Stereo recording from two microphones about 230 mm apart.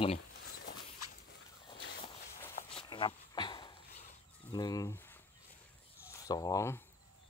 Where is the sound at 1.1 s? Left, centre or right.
Left.